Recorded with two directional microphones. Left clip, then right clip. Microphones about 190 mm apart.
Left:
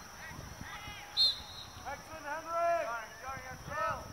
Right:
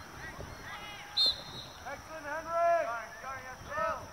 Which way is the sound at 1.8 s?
35° left (ahead or behind).